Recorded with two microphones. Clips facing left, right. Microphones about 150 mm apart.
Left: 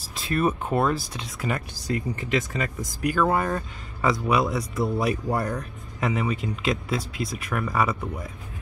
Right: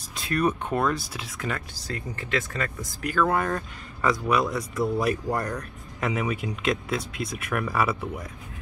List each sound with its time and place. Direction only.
0.1 s speech: centre (ahead or behind)
1.5 s speech: 15° left (ahead or behind); by 8.3 s 5° right (ahead or behind)